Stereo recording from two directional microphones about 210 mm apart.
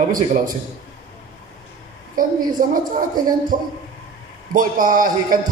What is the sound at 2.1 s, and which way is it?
A woman's voice, 40° right (ahead or behind).